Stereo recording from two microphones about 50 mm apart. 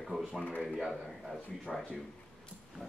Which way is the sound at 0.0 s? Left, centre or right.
Centre.